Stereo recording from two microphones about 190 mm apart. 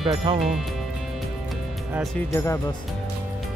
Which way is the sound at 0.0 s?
25° right (ahead or behind).